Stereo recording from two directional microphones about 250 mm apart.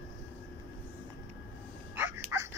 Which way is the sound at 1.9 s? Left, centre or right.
Centre.